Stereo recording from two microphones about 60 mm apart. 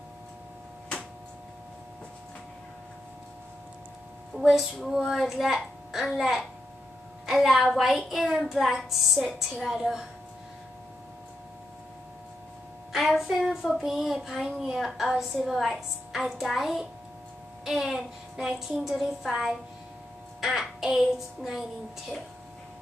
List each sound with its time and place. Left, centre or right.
4.3 s a woman's voice: right
4.8 s a woman's voice: centre
12.9 s a woman's voice: centre
20.3 s music: centre